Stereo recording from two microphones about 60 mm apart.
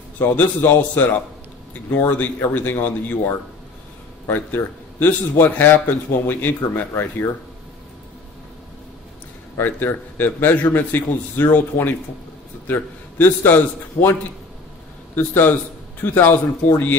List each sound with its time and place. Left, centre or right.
0.2 s speech: left
4.6 s a man's voice: left
9.6 s a man's voice: left
15.1 s a man's voice: left